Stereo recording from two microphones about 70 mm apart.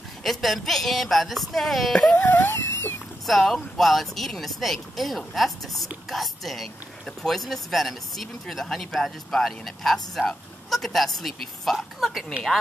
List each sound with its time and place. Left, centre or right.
0.2 s speech: centre
2.0 s a sound: left
3.3 s speech: centre